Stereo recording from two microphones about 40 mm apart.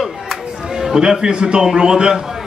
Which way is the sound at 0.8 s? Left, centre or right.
Centre.